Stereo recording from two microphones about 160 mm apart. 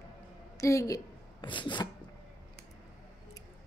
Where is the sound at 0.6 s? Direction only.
20° left (ahead or behind).